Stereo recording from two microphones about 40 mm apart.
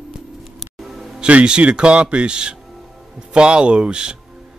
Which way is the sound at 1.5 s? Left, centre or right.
Right.